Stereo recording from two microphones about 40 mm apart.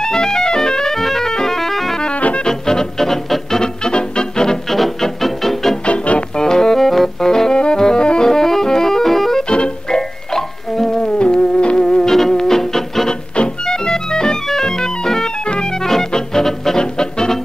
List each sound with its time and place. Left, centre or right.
0.0 s music: centre
2.1 s music: left
2.4 s music: centre
4.6 s music: centre
5.9 s music: left
6.3 s music: centre
9.5 s music: left
11.1 s music: left
13.4 s organ: centre
15.4 s music: left
15.8 s music: centre